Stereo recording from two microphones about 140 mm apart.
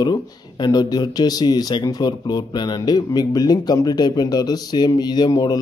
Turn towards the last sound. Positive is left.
turn(degrees=30)  # may be behind; listen again after turning